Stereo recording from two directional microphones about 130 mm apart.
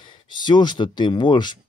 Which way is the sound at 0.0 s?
35° left (ahead or behind).